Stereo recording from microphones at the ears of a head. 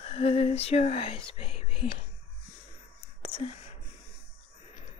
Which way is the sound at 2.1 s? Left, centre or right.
Left.